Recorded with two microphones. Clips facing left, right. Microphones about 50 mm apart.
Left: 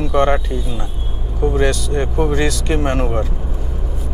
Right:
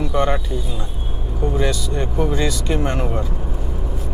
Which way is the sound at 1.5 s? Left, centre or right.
Left.